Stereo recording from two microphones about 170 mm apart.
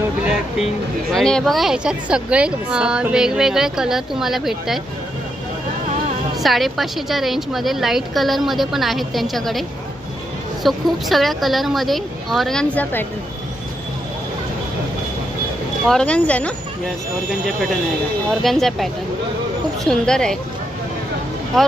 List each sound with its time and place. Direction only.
1.1 s a woman's voice: 5° left (ahead or behind)
6.4 s a woman's voice: centre (ahead or behind)
15.9 s speech: 5° left (ahead or behind)
18.3 s a woman's voice: centre (ahead or behind)